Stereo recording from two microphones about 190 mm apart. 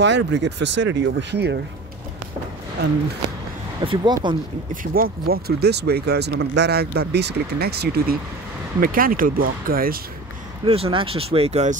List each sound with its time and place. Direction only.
0.0 s speech: 70° right (ahead or behind)
2.8 s speech: 60° right (ahead or behind)
3.8 s speech: 25° right (ahead or behind)
4.9 s speech: 50° right (ahead or behind)
10.7 s speech: 30° right (ahead or behind)